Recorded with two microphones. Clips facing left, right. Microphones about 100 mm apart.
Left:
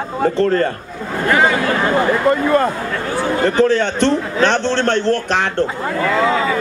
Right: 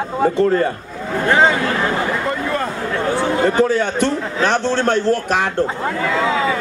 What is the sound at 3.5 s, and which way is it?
A man's voice, 10° right (ahead or behind).